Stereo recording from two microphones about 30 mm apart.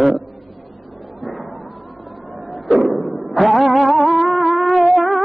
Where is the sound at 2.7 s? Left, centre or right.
Centre.